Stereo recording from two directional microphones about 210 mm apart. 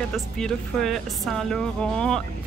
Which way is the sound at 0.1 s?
Centre (ahead or behind).